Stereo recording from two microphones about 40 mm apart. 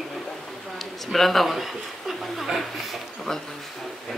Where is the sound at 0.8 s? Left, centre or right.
Centre.